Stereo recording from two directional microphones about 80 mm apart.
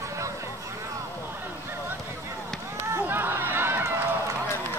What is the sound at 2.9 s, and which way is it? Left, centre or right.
Run, right.